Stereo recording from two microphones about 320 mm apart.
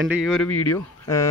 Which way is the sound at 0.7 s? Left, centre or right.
Centre.